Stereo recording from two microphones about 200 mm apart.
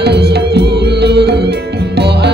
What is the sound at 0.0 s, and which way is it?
Music, 55° right (ahead or behind).